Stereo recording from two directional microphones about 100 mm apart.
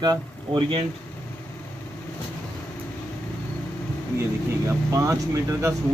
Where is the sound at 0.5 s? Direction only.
55° right (ahead or behind).